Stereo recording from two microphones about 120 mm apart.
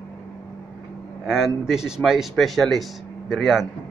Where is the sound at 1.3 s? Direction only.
5° right (ahead or behind).